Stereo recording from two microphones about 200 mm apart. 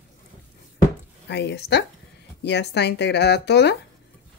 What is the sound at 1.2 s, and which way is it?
Speech, 60° left (ahead or behind).